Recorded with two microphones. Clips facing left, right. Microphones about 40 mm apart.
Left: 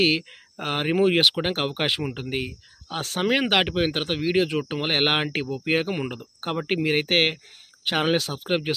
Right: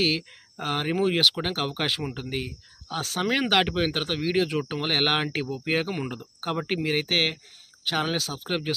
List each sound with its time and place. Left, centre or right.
0.0 s speech: centre